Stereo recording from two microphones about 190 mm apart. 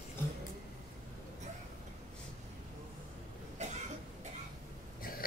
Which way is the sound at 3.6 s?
35° right (ahead or behind).